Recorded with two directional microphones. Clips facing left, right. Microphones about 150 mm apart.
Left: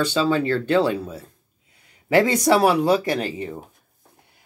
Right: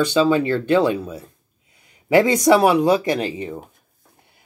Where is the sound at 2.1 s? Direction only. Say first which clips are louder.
Right 3 dB; 15° right (ahead or behind).